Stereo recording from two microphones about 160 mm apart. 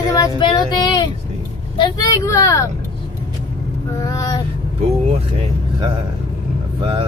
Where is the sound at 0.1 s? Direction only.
25° left (ahead or behind).